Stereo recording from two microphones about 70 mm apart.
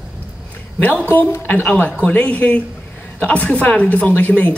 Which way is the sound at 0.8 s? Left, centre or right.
Left.